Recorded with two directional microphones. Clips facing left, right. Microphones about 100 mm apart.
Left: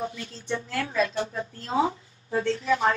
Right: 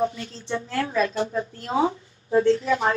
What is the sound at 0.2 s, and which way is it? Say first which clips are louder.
Speech: right 2 dB; 30° right (ahead or behind).